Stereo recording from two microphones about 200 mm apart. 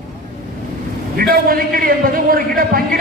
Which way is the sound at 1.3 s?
45° right (ahead or behind).